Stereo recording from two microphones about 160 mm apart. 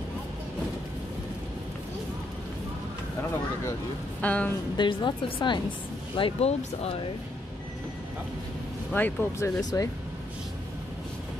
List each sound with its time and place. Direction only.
4.2 s speech: 10° left (ahead or behind)
4.7 s a woman's voice: 30° left (ahead or behind)
8.9 s speech: 10° left (ahead or behind)
9.6 s a woman's voice: 25° left (ahead or behind)